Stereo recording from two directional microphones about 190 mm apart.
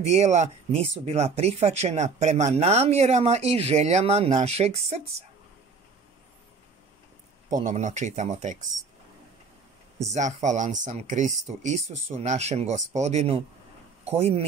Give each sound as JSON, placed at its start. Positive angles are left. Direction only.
{"t": 0.1, "sound": "speech", "side_deg": -35}
{"t": 7.4, "sound": "speech", "side_deg": -40}
{"t": 10.1, "sound": "speech", "side_deg": -40}